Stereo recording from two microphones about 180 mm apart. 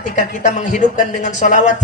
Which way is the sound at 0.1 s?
40° left (ahead or behind).